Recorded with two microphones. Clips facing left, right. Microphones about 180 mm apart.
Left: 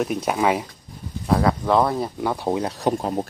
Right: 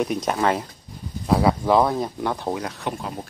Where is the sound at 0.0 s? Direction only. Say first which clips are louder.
Left 1 dB; 5° left (ahead or behind).